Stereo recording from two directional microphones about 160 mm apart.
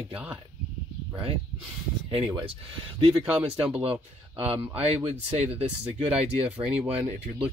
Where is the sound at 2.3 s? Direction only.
30° right (ahead or behind).